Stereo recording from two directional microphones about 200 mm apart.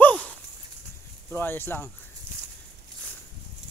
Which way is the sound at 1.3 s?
10° left (ahead or behind).